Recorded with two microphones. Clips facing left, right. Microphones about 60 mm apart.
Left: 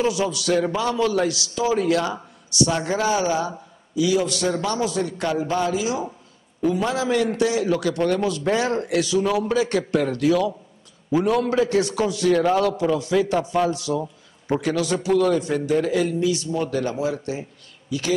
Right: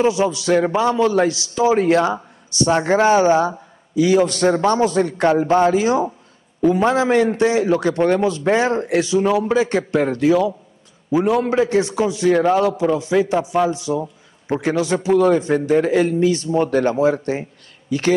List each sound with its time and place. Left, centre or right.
0.0 s a man's voice: right